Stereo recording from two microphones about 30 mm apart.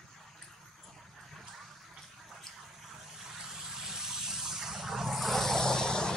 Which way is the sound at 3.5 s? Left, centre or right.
Centre.